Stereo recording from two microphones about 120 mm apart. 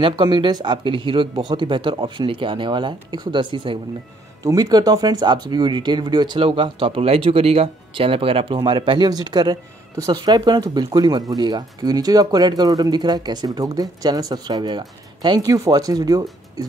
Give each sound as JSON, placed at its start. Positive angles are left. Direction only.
{"t": 0.0, "sound": "speech", "side_deg": -45}
{"t": 4.4, "sound": "speech", "side_deg": -30}